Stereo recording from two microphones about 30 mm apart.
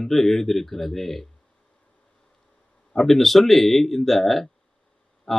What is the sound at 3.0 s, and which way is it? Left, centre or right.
Speech, centre.